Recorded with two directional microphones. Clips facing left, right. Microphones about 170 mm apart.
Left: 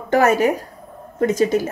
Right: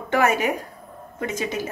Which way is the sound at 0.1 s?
40° left (ahead or behind).